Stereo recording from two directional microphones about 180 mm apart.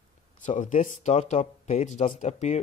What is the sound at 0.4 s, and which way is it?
Speech, 45° left (ahead or behind).